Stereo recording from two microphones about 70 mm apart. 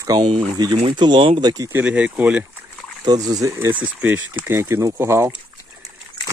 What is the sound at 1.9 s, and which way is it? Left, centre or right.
Speech, centre.